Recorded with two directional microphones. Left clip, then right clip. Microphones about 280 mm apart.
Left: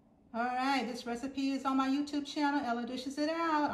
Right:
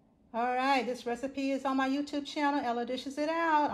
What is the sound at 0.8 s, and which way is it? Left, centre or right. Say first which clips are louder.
Speech: right 4 dB; centre.